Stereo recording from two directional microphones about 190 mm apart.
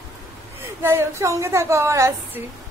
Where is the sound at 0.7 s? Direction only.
15° right (ahead or behind).